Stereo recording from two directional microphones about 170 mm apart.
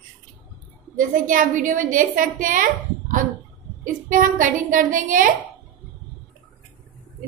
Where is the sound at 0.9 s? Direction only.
50° right (ahead or behind).